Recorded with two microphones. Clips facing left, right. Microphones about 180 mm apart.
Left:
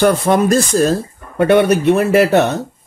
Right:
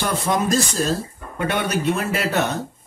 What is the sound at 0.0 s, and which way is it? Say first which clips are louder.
Speech: left 9 dB; 60° left (ahead or behind).